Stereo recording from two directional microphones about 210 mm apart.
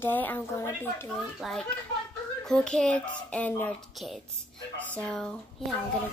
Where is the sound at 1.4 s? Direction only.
Centre (ahead or behind).